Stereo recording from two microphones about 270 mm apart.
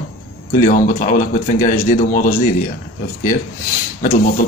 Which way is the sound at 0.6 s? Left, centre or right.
Left.